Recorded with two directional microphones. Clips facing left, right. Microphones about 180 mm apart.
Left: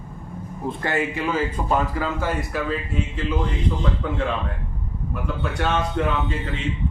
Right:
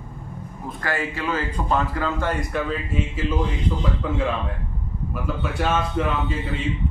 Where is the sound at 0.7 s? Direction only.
20° left (ahead or behind).